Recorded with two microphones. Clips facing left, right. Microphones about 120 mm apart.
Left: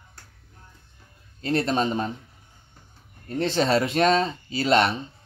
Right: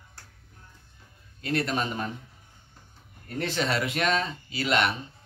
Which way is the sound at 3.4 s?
30° left (ahead or behind).